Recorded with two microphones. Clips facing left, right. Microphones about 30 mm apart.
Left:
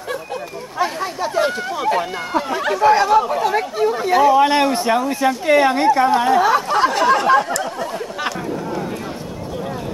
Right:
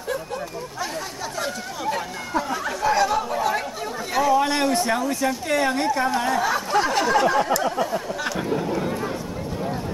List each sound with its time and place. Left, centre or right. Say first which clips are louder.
0.7 s speech: left 10 dB; left
3.0 s speech: left 6 dB; centre